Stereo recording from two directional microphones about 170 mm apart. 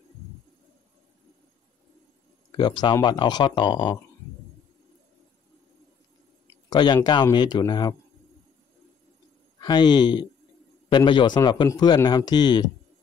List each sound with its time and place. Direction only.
2.5 s a man's voice: 25° left (ahead or behind)
6.7 s a man's voice: 25° left (ahead or behind)
9.6 s a man's voice: 25° left (ahead or behind)